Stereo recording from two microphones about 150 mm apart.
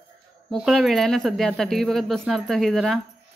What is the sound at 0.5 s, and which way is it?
Speech, centre (ahead or behind).